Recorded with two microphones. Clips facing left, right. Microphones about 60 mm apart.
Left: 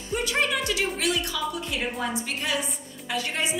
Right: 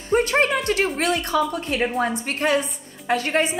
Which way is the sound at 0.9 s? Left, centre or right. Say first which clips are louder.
Right 6 dB; right.